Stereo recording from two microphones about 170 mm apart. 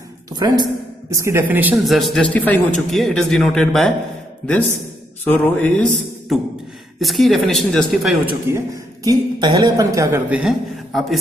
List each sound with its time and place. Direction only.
0.3 s a man's voice: 25° right (ahead or behind)
2.0 s a man's voice: centre (ahead or behind)
5.2 s a man's voice: 10° left (ahead or behind)
9.0 s a man's voice: 20° right (ahead or behind); by 11.1 s centre (ahead or behind)